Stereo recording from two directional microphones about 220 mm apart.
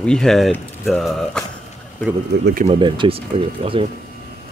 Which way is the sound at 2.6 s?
25° right (ahead or behind).